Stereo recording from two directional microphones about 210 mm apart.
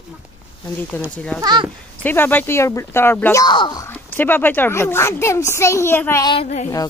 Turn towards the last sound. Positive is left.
turn(degrees=30)  # may be behind; listen again after turning